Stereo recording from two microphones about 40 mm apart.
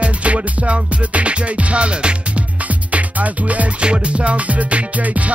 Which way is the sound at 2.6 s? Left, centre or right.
Right.